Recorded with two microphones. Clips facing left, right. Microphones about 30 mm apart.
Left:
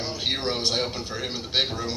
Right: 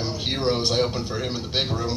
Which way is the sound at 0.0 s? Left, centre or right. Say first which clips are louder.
Right 2 dB; centre.